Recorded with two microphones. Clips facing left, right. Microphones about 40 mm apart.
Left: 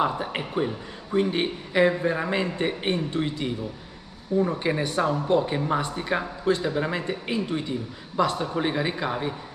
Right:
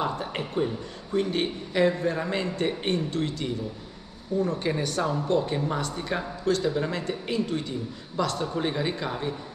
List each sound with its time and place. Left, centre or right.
0.0 s a man's voice: centre